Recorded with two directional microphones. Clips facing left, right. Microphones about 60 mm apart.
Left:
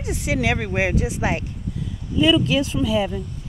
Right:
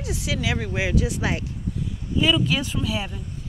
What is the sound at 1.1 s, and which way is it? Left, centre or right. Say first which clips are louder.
Speech: left 2 dB; left.